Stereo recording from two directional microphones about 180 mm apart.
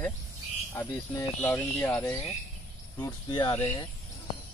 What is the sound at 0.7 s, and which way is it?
Speech, 10° left (ahead or behind).